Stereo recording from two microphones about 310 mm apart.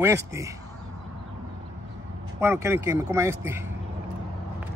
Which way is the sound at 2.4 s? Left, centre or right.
Centre.